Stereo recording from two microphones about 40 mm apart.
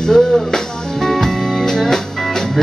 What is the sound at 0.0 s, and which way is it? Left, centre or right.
Music, centre.